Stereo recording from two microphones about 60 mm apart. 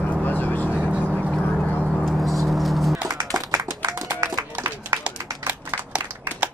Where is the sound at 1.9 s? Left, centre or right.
Centre.